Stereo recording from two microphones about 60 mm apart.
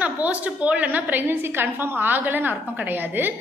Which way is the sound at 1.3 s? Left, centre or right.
Right.